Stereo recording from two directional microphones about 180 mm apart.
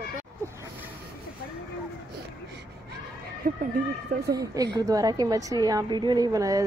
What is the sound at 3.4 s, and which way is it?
Speech, 50° right (ahead or behind).